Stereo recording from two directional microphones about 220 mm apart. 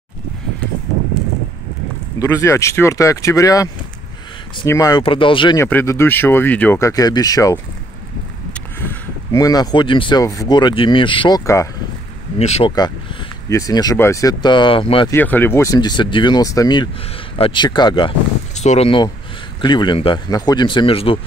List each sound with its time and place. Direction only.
2.1 s speech: 15° left (ahead or behind)
5.7 s speech: 10° left (ahead or behind)
8.8 s speech: 15° left (ahead or behind)
12.4 s speech: 30° left (ahead or behind)
15.1 s speech: 10° left (ahead or behind); by 21.2 s 25° left (ahead or behind)